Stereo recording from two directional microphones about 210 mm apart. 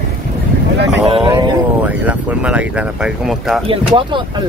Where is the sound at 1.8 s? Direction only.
5° right (ahead or behind).